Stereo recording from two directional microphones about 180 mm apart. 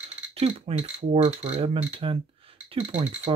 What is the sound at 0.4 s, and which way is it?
Speech, 35° right (ahead or behind).